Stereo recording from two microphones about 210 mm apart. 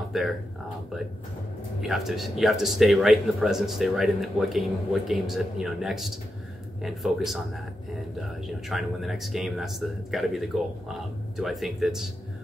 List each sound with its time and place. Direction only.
0.1 s a man's voice: centre (ahead or behind)
1.8 s a man's voice: centre (ahead or behind)
8.6 s a man's voice: centre (ahead or behind)